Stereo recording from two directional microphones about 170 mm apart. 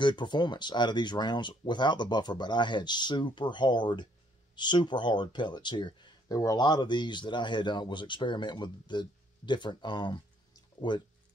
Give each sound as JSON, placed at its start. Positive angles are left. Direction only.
{"t": 0.0, "sound": "speech", "side_deg": 25}